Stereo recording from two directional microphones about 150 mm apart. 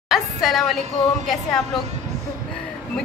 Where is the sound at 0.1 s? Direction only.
Centre (ahead or behind).